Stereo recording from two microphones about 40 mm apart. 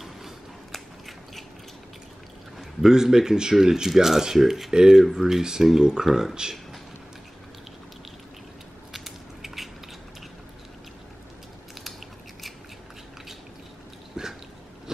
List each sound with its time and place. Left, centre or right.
0.0 s biting: centre
2.8 s speech: centre
8.9 s a sound: centre
14.2 s dog: centre